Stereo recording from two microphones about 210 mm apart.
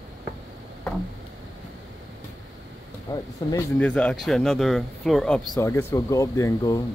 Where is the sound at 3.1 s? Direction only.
20° left (ahead or behind).